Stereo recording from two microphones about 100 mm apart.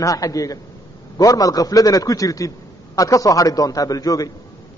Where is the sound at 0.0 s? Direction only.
35° left (ahead or behind).